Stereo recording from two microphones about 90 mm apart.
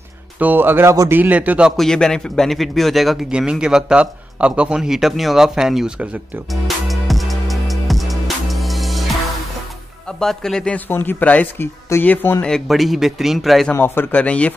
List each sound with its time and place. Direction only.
0.4 s a man's voice: 20° right (ahead or behind)
1.8 s a man's voice: 5° left (ahead or behind)
6.5 s music: centre (ahead or behind)
10.0 s speech: 5° left (ahead or behind)
10.9 s speech: 20° left (ahead or behind)
12.4 s a man's voice: centre (ahead or behind)
13.7 s speech: 25° left (ahead or behind)